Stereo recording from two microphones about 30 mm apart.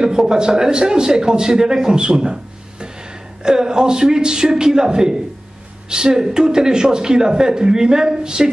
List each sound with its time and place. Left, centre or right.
0.0 s speech: right
3.4 s speech: right